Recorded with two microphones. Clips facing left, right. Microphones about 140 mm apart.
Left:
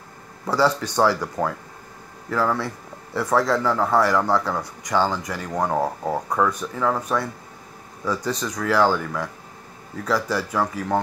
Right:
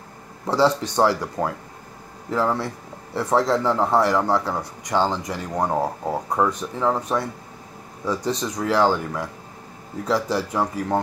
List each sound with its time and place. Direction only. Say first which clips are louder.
0.5 s a man's voice: right 1 dB; 25° right (ahead or behind)
5.6 s speech: even; 10° right (ahead or behind)
6.3 s a man's voice: right 1 dB; 25° right (ahead or behind)